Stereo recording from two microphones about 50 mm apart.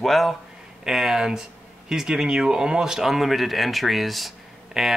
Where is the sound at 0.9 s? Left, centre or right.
Centre.